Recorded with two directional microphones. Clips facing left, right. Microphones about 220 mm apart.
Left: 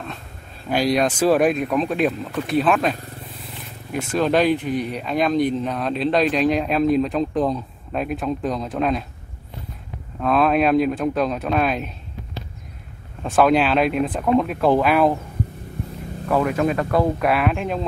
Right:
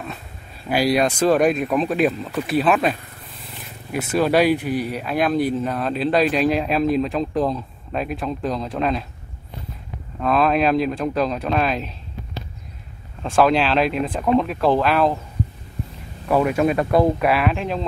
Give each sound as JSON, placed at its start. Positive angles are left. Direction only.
{"t": 0.7, "sound": "speech", "side_deg": -10}
{"t": 1.0, "sound": "speech", "side_deg": 5}
{"t": 3.9, "sound": "speech", "side_deg": -5}
{"t": 10.2, "sound": "speech", "side_deg": 0}
{"t": 13.2, "sound": "speech", "side_deg": 0}
{"t": 16.3, "sound": "speech", "side_deg": -10}
{"t": 17.3, "sound": "speech", "side_deg": 0}